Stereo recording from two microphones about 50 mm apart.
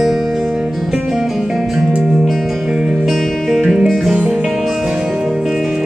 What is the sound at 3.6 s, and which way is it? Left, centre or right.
Music, centre.